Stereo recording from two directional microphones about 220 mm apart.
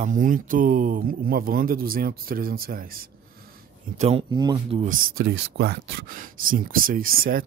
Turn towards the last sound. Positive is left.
turn(degrees=-40)  # may be behind; listen again after turning